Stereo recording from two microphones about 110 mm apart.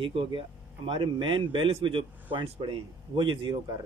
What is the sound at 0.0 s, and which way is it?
Speech, 50° right (ahead or behind).